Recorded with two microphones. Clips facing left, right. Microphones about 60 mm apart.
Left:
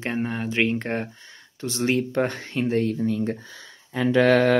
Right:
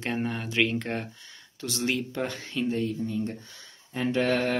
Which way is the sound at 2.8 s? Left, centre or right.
Left.